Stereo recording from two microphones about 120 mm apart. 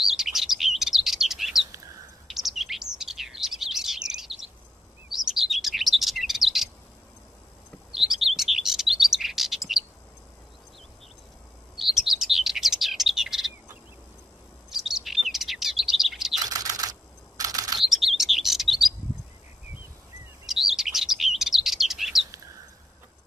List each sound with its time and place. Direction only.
0.0 s chirp: 5° right (ahead or behind)
7.9 s chirp: 5° right (ahead or behind)
11.7 s chirp: centre (ahead or behind)
14.7 s chirp: centre (ahead or behind)
16.4 s typing: 30° right (ahead or behind)
17.4 s computer keyboard: 30° right (ahead or behind)
17.7 s chirp: centre (ahead or behind)
20.4 s chirp: 5° right (ahead or behind)